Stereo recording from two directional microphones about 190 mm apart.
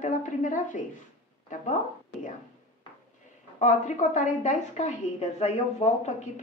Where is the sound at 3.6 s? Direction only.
40° left (ahead or behind).